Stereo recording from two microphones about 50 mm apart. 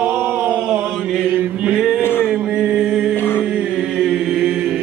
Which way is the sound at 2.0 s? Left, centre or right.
Left.